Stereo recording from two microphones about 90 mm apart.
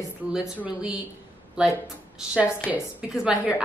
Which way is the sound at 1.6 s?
10° right (ahead or behind).